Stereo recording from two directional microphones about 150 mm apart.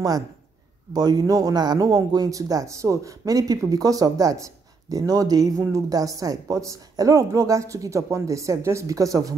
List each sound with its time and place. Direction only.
0.9 s a man's voice: 25° right (ahead or behind)